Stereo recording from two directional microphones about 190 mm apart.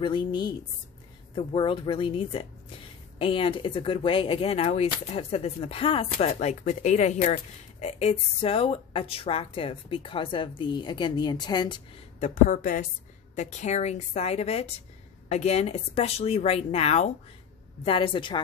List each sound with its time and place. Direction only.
0.0 s speech: 25° left (ahead or behind)
12.2 s a woman's voice: 45° left (ahead or behind); by 18.4 s 25° left (ahead or behind)